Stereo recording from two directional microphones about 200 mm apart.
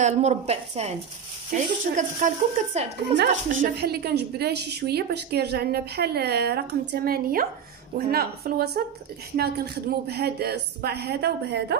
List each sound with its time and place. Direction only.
0.0 s speech: 35° right (ahead or behind)
3.5 s a woman's voice: 45° right (ahead or behind)